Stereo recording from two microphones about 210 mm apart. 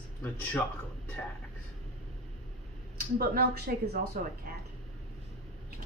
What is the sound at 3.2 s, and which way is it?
A woman's voice, 45° right (ahead or behind).